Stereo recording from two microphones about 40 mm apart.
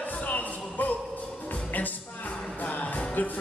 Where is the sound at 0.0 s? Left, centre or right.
Left.